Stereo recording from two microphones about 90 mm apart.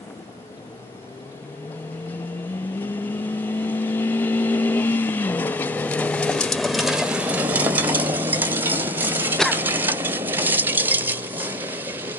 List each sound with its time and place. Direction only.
2.8 s vehicle: 20° left (ahead or behind); by 9.4 s 20° right (ahead or behind)
9.5 s stir: 20° right (ahead or behind)